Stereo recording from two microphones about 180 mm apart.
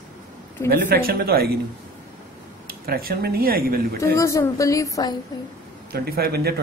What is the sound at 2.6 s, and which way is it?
Speech, 55° right (ahead or behind).